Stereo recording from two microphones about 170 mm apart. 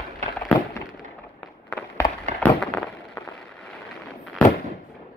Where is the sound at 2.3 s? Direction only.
5° left (ahead or behind).